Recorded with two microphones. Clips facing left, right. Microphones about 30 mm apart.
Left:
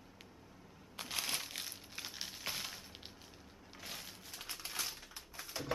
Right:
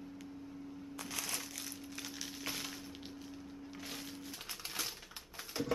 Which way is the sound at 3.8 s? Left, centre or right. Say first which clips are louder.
Right 1 dB; centre.